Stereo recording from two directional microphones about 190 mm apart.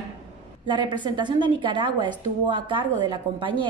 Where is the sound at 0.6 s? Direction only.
25° right (ahead or behind).